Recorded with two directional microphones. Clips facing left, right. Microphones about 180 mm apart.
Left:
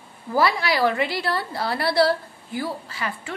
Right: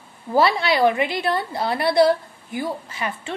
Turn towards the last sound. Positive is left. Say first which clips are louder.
# right 2 dB
turn(degrees=-20)  # may be behind; listen again after turning